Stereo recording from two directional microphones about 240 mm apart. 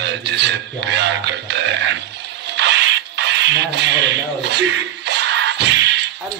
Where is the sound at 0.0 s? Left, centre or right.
Right.